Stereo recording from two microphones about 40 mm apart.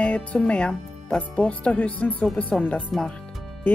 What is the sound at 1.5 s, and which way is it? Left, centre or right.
Speech, left.